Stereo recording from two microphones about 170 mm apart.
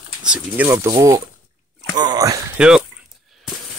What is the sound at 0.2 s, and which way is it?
Speech, 5° right (ahead or behind).